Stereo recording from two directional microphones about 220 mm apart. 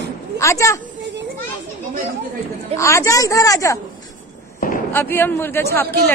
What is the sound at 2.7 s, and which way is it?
A man's voice, 15° left (ahead or behind).